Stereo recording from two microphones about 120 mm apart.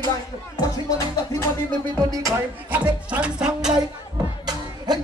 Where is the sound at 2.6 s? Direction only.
15° right (ahead or behind).